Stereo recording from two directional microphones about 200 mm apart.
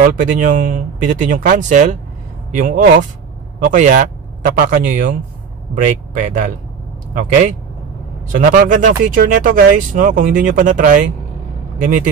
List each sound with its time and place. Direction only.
0.0 s a man's voice: 40° right (ahead or behind)
6.1 s speech: 40° right (ahead or behind)